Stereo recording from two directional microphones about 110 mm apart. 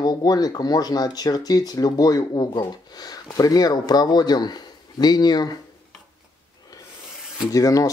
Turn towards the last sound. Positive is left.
turn(degrees=30)  # may be behind; listen again after turning